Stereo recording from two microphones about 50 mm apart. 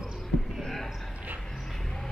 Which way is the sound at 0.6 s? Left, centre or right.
Centre.